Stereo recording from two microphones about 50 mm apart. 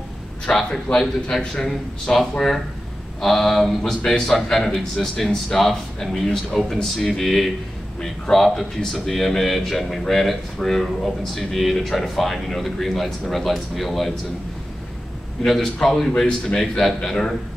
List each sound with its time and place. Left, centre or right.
0.5 s speech: centre
0.8 s a man's voice: left
1.3 s speech: centre
15.4 s speech: centre